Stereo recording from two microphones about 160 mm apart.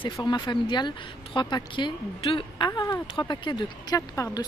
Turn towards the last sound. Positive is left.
turn(degrees=20)  # may be behind; listen again after turning